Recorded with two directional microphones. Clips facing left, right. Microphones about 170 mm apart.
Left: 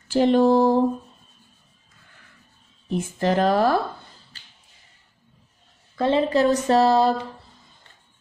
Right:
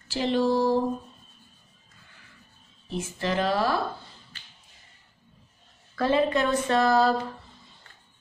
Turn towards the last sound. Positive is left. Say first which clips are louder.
# left 4 dB
turn(degrees=30)  # may be behind; listen again after turning